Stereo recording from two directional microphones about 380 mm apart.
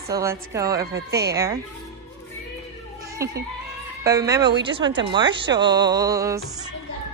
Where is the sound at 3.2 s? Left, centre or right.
Centre.